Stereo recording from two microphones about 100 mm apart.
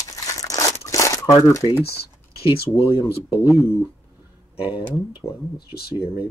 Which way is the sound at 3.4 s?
30° left (ahead or behind).